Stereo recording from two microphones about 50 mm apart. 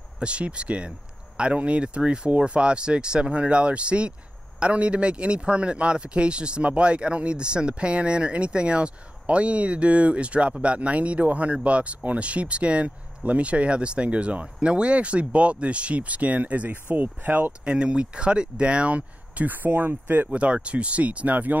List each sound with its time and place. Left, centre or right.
0.2 s speech: right
17.5 s speech: right
20.2 s speech: right